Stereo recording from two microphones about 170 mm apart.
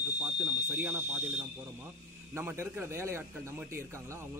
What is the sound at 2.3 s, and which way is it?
A man's voice, 15° right (ahead or behind).